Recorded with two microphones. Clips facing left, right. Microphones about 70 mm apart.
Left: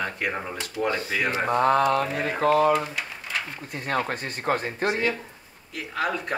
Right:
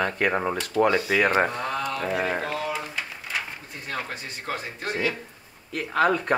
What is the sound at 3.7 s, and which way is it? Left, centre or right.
Speech, left.